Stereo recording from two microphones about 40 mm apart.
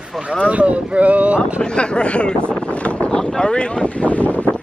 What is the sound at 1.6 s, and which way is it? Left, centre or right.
Speech, left.